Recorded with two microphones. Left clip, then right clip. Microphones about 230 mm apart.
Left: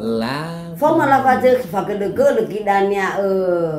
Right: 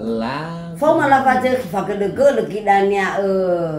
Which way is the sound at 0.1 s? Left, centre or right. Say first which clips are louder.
Right 1 dB; left.